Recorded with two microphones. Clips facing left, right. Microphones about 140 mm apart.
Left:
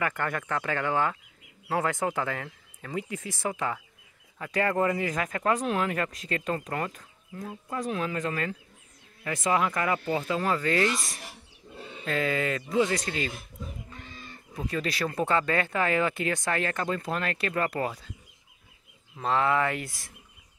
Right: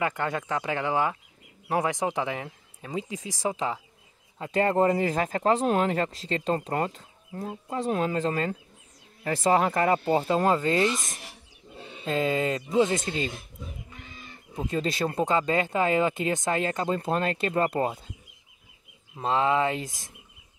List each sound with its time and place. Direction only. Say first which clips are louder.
0.0 s speech: right 2 dB; 20° right (ahead or behind)
14.5 s speech: right 3 dB; 25° right (ahead or behind)
19.1 s speech: right 1 dB; 20° right (ahead or behind)